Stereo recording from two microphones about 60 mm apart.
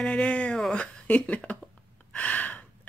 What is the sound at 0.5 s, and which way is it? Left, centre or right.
Speech, centre.